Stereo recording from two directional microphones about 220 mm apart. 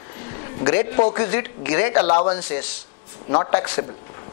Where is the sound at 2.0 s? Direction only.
30° left (ahead or behind).